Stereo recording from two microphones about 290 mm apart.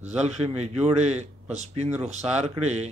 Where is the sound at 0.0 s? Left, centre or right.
Right.